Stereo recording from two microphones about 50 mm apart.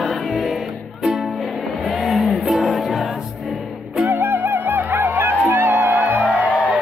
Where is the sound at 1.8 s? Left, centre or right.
Centre.